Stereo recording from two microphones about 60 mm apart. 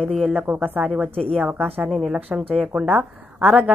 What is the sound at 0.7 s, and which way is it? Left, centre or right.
A woman's voice, right.